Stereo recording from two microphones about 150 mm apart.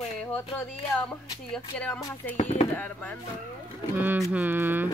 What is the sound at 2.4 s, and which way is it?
Speech, 45° left (ahead or behind).